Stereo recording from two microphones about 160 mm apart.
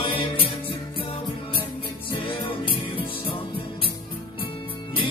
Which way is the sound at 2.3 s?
35° left (ahead or behind).